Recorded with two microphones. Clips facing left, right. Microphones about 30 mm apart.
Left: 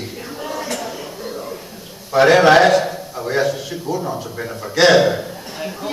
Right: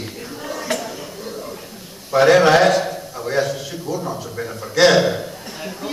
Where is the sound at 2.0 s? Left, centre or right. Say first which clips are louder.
Left 1 dB; centre.